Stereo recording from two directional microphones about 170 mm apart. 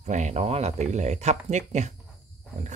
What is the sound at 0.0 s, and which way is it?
Speech, 45° right (ahead or behind).